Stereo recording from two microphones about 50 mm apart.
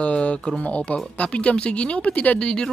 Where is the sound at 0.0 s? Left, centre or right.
Left.